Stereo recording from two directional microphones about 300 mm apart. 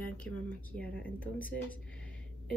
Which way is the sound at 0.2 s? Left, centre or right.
Centre.